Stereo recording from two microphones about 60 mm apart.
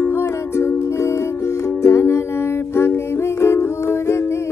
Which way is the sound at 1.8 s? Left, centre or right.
Left.